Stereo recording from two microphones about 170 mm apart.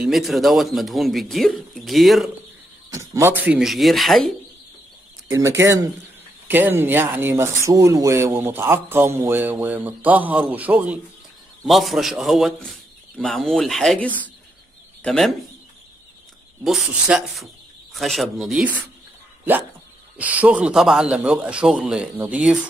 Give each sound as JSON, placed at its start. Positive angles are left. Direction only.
{"t": 0.0, "sound": "a man's voice", "side_deg": 0}
{"t": 2.9, "sound": "a man's voice", "side_deg": -15}
{"t": 5.3, "sound": "a man's voice", "side_deg": -15}
{"t": 16.6, "sound": "a man's voice", "side_deg": 0}
{"t": 20.2, "sound": "a man's voice", "side_deg": -10}